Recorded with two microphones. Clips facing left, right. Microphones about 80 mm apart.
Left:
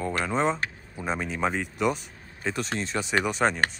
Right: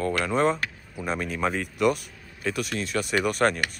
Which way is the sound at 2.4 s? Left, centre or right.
Left.